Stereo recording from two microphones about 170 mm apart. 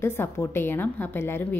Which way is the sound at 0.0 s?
15° left (ahead or behind).